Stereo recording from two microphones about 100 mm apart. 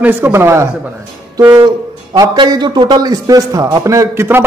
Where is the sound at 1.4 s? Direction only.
40° right (ahead or behind).